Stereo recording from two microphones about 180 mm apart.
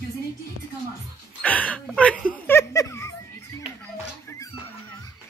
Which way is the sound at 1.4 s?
10° left (ahead or behind).